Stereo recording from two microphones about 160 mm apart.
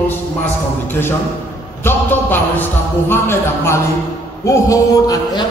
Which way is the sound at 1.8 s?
15° left (ahead or behind).